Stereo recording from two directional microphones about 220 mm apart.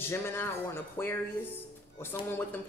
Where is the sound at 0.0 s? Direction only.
10° left (ahead or behind).